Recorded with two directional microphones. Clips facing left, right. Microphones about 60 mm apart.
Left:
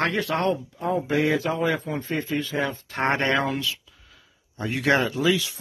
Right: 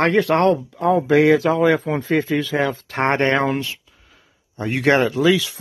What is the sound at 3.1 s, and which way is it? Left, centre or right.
Speech, right.